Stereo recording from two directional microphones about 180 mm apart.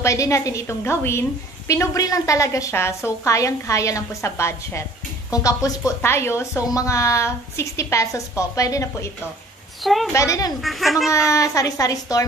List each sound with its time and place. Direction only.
0.0 s speech: 15° left (ahead or behind)
10.1 s speech: 15° left (ahead or behind)
10.6 s a child's voice: centre (ahead or behind)
11.1 s a woman's voice: 15° left (ahead or behind)